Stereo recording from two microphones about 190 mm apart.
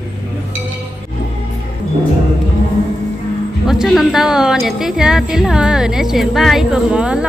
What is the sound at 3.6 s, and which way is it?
A woman's voice, centre (ahead or behind).